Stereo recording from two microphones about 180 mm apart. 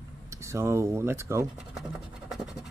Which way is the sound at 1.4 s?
5° right (ahead or behind).